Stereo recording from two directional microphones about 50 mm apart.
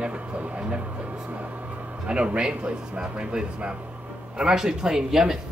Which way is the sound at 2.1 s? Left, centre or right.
Centre.